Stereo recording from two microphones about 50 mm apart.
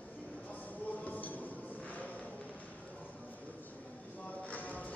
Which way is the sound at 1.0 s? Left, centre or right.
Left.